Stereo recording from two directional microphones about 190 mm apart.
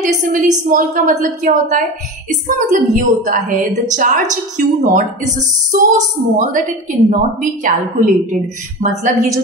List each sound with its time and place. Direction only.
0.0 s a woman's voice: 45° right (ahead or behind)